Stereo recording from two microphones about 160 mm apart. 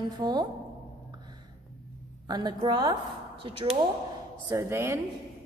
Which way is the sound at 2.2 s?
25° right (ahead or behind).